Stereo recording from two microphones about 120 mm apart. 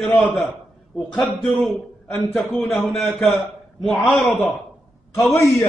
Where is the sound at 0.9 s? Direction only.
Centre (ahead or behind).